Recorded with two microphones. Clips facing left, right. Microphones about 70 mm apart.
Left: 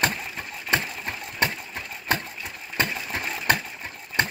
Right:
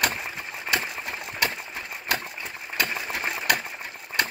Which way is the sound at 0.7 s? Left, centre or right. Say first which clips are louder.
Left 2 dB; left.